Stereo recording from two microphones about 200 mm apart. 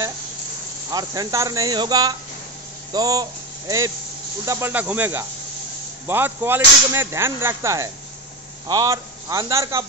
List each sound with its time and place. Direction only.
0.9 s speech: 20° right (ahead or behind)